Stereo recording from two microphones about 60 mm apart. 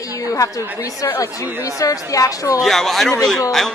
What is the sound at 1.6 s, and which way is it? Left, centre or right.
A woman's voice, left.